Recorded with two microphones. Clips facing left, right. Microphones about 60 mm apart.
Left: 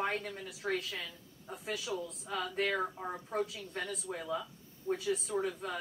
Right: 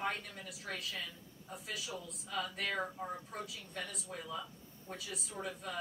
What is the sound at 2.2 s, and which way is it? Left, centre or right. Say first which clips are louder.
Speech: left 4 dB; left.